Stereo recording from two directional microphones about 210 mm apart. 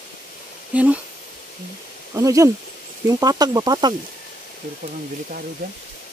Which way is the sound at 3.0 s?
20° right (ahead or behind).